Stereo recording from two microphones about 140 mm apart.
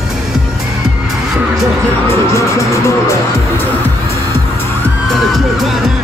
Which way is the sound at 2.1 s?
20° left (ahead or behind).